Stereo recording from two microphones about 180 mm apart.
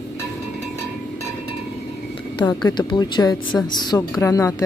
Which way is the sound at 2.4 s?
25° left (ahead or behind).